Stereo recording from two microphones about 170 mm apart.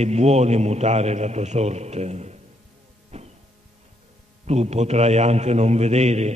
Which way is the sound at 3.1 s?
40° right (ahead or behind).